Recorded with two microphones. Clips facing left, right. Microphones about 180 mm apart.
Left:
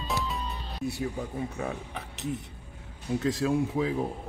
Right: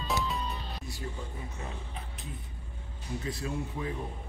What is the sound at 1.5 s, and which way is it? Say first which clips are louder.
Speech: left 7 dB; 70° left (ahead or behind).